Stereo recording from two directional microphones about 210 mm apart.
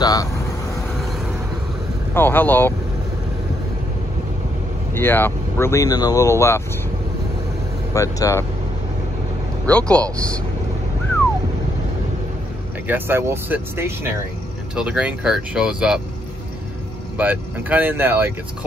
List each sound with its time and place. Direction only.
0.0 s vehicle: 15° left (ahead or behind)
2.1 s speech: 10° left (ahead or behind)
4.9 s speech: 10° left (ahead or behind)
7.9 s speech: 15° left (ahead or behind)
9.7 s speech: 5° left (ahead or behind)
12.8 s speech: 10° right (ahead or behind)
17.2 s speech: 5° right (ahead or behind)